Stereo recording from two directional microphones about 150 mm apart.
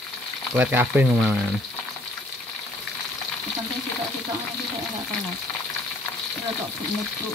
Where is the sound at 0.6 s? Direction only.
10° right (ahead or behind).